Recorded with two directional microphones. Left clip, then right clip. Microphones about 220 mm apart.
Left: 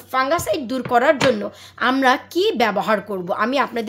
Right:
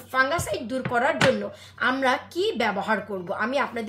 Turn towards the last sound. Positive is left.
turn(degrees=50)  # may be behind; listen again after turning